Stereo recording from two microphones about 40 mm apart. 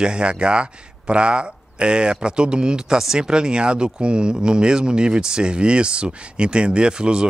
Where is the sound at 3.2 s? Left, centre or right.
Right.